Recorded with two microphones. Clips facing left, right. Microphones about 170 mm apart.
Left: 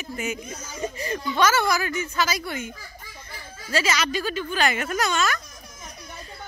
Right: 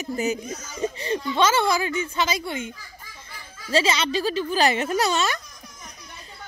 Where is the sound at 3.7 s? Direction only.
30° right (ahead or behind).